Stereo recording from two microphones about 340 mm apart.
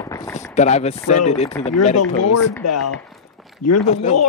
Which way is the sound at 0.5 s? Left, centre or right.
Centre.